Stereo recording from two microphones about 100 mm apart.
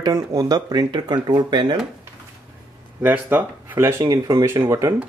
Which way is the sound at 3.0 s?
20° right (ahead or behind).